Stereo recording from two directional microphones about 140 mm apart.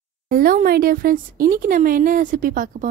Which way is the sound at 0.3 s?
90° right.